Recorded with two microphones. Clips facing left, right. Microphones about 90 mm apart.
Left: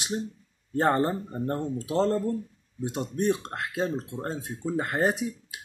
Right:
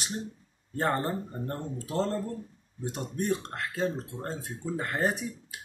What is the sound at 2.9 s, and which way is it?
Speech, 15° left (ahead or behind).